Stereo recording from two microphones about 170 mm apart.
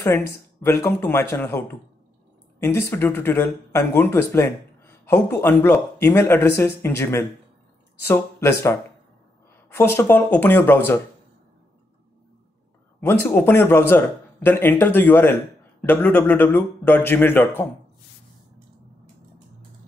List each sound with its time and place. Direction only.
0.7 s speech: 15° left (ahead or behind)
13.0 s speech: 10° left (ahead or behind)